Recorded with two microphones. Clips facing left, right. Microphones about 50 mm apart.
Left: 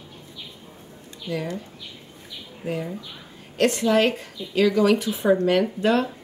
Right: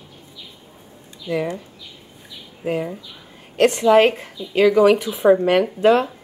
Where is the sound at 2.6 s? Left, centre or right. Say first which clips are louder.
Right 5 dB; right.